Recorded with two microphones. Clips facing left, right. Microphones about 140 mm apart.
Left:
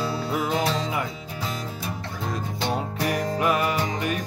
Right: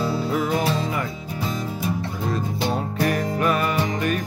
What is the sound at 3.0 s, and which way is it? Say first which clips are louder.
Music: right 2 dB; 15° left (ahead or behind).